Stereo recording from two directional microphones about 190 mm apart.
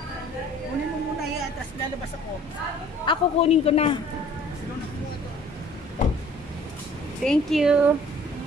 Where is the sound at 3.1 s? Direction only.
30° left (ahead or behind).